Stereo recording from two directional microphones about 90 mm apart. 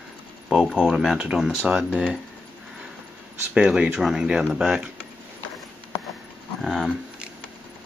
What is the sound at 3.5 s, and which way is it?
Speech, 10° right (ahead or behind).